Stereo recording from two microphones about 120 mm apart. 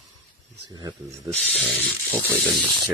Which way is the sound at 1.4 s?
Centre (ahead or behind).